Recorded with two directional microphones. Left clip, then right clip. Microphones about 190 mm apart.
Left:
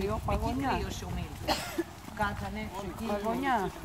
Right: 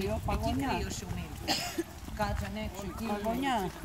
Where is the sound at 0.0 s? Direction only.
50° right (ahead or behind).